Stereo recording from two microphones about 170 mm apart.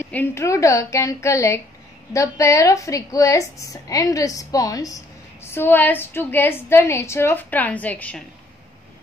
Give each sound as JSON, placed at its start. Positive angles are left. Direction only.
{"t": 0.0, "sound": "a woman's voice", "side_deg": 15}